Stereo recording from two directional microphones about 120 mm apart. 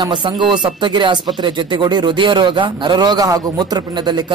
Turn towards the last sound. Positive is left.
turn(degrees=-40)  # may be behind; listen again after turning